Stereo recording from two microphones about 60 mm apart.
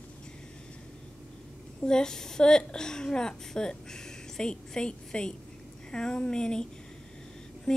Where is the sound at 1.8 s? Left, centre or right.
Centre.